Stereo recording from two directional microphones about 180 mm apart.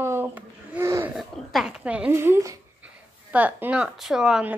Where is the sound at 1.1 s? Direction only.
Centre (ahead or behind).